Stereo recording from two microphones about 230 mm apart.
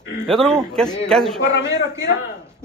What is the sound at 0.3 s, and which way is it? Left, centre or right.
A man's voice, centre.